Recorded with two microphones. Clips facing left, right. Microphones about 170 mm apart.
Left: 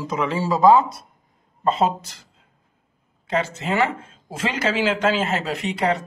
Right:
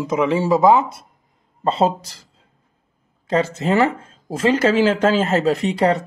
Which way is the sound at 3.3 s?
40° right (ahead or behind).